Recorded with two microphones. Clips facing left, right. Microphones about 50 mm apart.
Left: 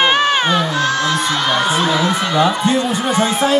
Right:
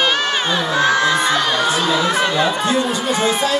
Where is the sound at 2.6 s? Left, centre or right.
Left.